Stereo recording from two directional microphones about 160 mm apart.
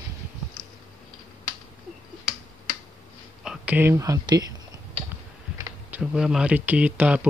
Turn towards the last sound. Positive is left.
turn(degrees=-10)  # may be behind; listen again after turning